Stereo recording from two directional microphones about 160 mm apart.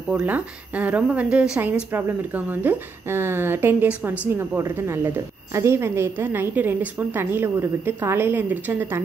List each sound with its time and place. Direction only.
0.1 s a woman's voice: 10° right (ahead or behind)